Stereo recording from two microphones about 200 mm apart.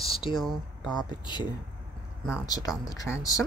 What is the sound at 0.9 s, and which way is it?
Speech, 20° left (ahead or behind).